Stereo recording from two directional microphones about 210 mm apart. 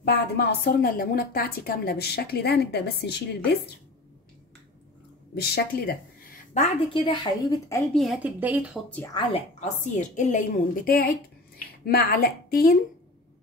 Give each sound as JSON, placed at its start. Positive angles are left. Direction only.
{"t": 0.0, "sound": "a woman's voice", "side_deg": 50}
{"t": 5.3, "sound": "a woman's voice", "side_deg": 50}
{"t": 6.5, "sound": "a woman's voice", "side_deg": 30}
{"t": 7.9, "sound": "speech", "side_deg": 0}
{"t": 9.1, "sound": "a woman's voice", "side_deg": 30}